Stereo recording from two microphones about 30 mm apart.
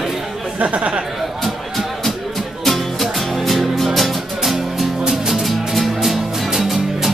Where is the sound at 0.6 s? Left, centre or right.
Right.